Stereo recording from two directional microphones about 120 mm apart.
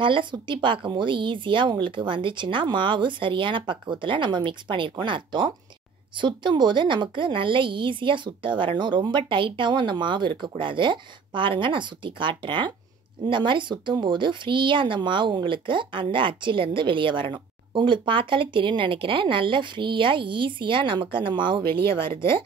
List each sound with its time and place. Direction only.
0.0 s speech: 40° right (ahead or behind)
21.8 s speech: 20° left (ahead or behind)